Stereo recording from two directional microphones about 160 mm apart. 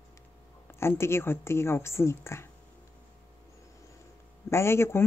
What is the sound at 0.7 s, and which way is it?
Speech, 15° left (ahead or behind).